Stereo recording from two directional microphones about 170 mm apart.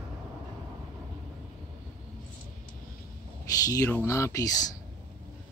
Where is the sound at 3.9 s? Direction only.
15° left (ahead or behind).